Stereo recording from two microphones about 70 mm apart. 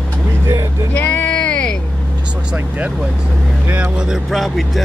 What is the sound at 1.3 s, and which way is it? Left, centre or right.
Vehicle, centre.